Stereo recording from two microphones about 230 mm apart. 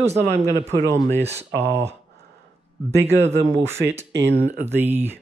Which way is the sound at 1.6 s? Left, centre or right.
Right.